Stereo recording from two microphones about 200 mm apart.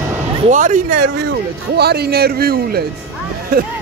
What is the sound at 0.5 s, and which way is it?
Speech, 40° right (ahead or behind).